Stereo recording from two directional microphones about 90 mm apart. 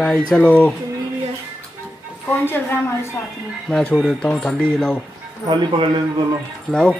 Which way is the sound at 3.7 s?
10° left (ahead or behind).